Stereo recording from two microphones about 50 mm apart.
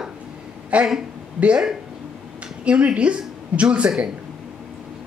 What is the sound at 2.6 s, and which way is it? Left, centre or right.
Speech, right.